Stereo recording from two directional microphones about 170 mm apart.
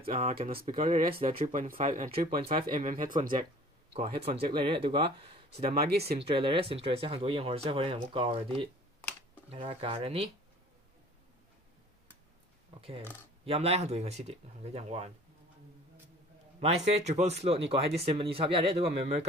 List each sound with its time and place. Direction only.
0.2 s speech: 35° right (ahead or behind)
0.6 s speech: 55° right (ahead or behind)
1.8 s speech: 35° right (ahead or behind)
2.8 s speech: 50° right (ahead or behind)
3.9 s speech: 35° right (ahead or behind)
5.8 s speech: 70° right (ahead or behind)
6.1 s speech: 30° right (ahead or behind)
12.7 s a sound: 35° right (ahead or behind)
13.5 s speech: 35° right (ahead or behind)
16.5 s speech: 40° right (ahead or behind)